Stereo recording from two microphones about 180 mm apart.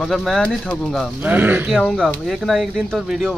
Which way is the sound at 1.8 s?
Centre (ahead or behind).